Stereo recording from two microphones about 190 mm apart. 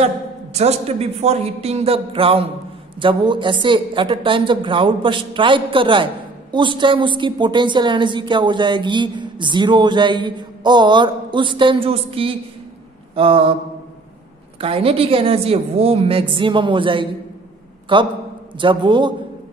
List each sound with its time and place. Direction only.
0.0 s a woman's voice: 35° right (ahead or behind)
14.6 s a woman's voice: 30° right (ahead or behind)